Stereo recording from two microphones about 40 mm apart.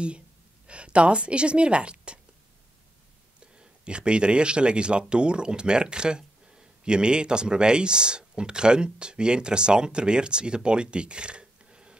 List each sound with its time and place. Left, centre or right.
0.7 s speech: right
3.3 s speech: right